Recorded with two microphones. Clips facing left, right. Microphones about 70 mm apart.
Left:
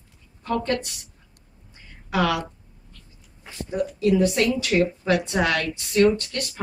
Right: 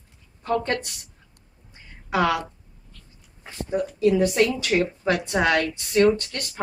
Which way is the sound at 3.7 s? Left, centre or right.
Right.